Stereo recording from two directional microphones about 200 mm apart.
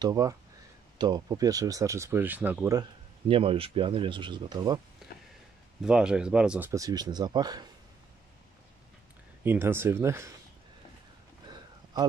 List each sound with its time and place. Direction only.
0.0 s speech: 15° right (ahead or behind)
2.8 s speech: 25° right (ahead or behind)
5.8 s speech: 5° right (ahead or behind)
6.7 s speech: 20° right (ahead or behind)
9.4 s speech: 10° right (ahead or behind)
11.4 s a sound: 20° right (ahead or behind)